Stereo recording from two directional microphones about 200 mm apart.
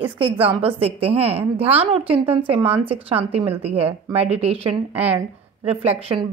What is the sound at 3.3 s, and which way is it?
Speech, 30° right (ahead or behind).